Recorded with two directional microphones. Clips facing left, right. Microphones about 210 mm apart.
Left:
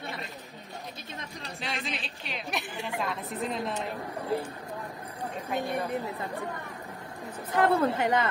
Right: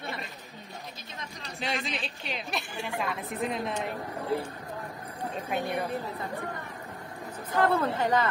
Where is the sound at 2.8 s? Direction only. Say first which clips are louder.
Even; centre (ahead or behind).